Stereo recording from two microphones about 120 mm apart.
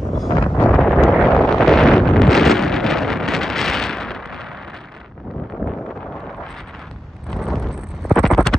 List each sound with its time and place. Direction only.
0.3 s wind noise: 20° left (ahead or behind)
0.7 s wind noise: 5° left (ahead or behind)
7.2 s a sound: centre (ahead or behind)